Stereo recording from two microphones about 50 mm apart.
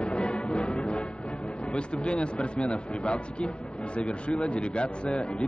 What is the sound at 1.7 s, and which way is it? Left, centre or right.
A man's voice, left.